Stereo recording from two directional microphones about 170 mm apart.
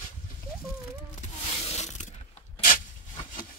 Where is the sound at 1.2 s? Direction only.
40° left (ahead or behind).